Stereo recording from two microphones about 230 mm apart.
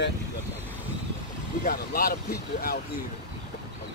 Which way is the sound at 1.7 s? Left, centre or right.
Left.